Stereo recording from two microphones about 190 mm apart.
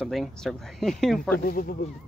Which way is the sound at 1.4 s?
50° left (ahead or behind).